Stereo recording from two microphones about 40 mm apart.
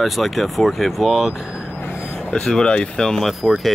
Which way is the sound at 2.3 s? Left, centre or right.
Centre.